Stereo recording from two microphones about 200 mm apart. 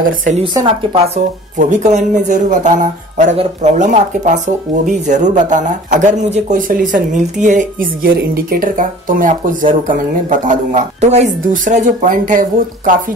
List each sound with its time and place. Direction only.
0.4 s speech: 25° right (ahead or behind); by 12.9 s 45° right (ahead or behind)